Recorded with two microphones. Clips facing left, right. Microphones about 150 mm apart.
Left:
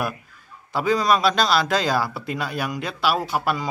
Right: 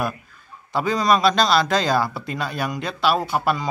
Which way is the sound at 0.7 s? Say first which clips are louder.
Even; 5° left (ahead or behind).